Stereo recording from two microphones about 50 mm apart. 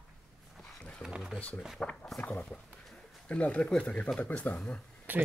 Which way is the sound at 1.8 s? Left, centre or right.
Centre.